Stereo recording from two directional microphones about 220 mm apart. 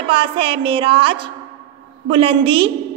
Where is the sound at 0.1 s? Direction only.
25° right (ahead or behind).